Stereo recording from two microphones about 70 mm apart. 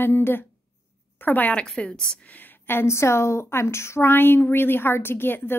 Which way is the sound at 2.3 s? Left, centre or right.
Left.